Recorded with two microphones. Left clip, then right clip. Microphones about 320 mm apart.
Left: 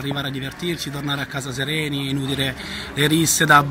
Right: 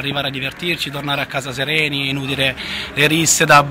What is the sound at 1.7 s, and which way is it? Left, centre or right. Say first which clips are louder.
Speech: right 9 dB; right.